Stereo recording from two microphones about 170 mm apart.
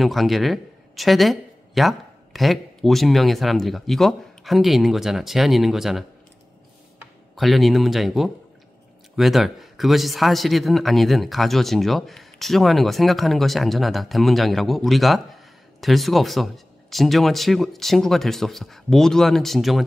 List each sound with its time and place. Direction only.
0.0 s speech: centre (ahead or behind)
7.3 s a man's voice: centre (ahead or behind)